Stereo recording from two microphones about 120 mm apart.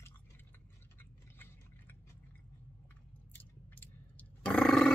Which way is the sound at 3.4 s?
15° left (ahead or behind).